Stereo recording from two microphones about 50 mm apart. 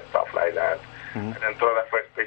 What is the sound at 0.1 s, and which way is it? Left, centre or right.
Speech, centre.